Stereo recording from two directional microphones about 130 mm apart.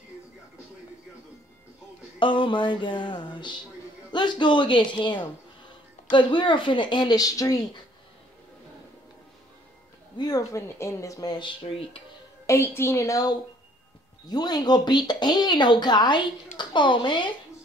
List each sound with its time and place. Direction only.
2.1 s speech: 40° left (ahead or behind)
10.1 s speech: 30° left (ahead or behind)
12.4 s a woman's voice: 20° left (ahead or behind); by 17.3 s 35° left (ahead or behind)